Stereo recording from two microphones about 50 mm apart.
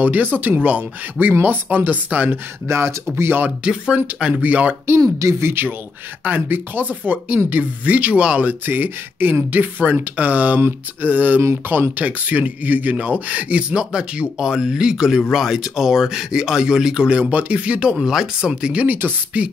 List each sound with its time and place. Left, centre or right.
0.0 s speech: right
2.7 s speech: right
3.4 s speech: right
4.4 s speech: right
4.8 s speech: right
6.2 s speech: right
8.5 s speech: right
12.0 s speech: right
17.9 s speech: centre
18.9 s speech: right
19.3 s speech: right